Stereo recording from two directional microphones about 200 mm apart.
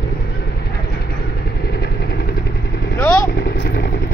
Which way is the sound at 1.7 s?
50° left (ahead or behind).